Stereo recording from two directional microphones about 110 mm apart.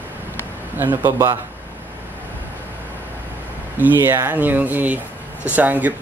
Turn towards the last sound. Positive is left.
turn(degrees=-15)  # may be behind; listen again after turning